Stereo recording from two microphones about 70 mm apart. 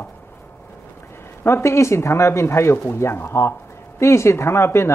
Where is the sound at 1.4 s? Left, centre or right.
Left.